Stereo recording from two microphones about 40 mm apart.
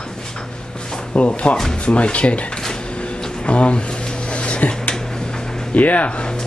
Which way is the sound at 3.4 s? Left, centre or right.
Left.